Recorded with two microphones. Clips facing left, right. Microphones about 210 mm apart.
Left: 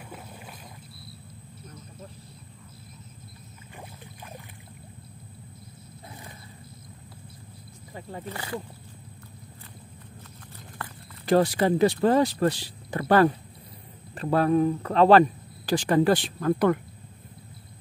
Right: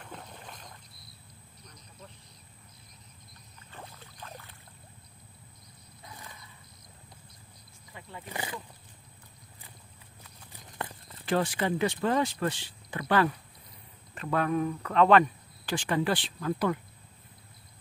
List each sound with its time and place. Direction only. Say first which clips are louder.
0.0 s boat: left 3 dB; 10° left (ahead or behind)
3.7 s rowboat: left 3 dB; 15° left (ahead or behind)
7.9 s wild animals: left 7 dB; 40° left (ahead or behind)
8.3 s speech: left 1 dB; 15° right (ahead or behind)
10.8 s clip-clop: right 2 dB; 20° right (ahead or behind)
11.2 s speech: left 7 dB; 40° left (ahead or behind); by 16.8 s 55° left (ahead or behind)